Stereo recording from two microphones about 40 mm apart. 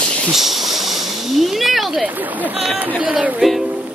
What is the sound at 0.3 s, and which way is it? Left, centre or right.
Speech, centre.